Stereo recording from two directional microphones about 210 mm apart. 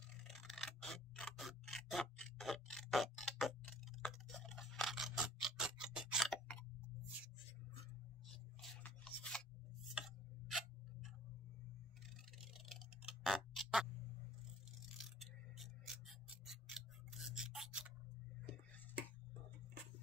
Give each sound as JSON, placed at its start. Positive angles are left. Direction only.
{"t": 0.3, "sound": "a sound", "side_deg": 0}
{"t": 8.3, "sound": "scissors", "side_deg": 0}
{"t": 9.8, "sound": "tick-tock", "side_deg": 0}
{"t": 12.6, "sound": "tick-tock", "side_deg": 0}
{"t": 14.9, "sound": "scissors", "side_deg": 0}